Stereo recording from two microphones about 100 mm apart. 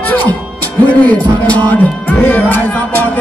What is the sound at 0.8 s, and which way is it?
Music, 15° left (ahead or behind).